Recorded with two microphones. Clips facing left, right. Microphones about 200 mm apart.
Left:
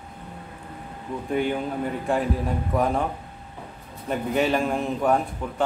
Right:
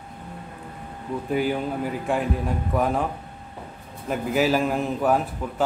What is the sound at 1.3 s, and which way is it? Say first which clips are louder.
Speech: even; 5° right (ahead or behind).